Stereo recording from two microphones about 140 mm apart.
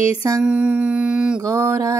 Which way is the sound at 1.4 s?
25° right (ahead or behind).